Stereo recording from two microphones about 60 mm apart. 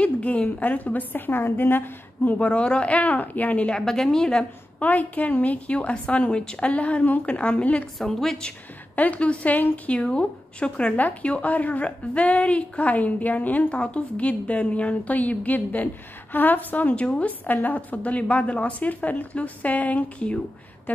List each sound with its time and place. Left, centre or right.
0.0 s a woman's voice: left
2.3 s a woman's voice: left
3.8 s a woman's voice: centre
4.8 s a woman's voice: left
7.8 s a woman's voice: centre
8.9 s a woman's voice: left
17.0 s a woman's voice: centre
17.3 s a woman's voice: left